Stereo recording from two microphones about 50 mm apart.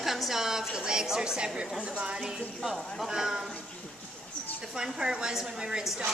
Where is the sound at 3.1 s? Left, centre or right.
Centre.